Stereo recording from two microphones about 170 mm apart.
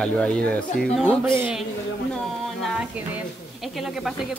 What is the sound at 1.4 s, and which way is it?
Speech, 10° right (ahead or behind).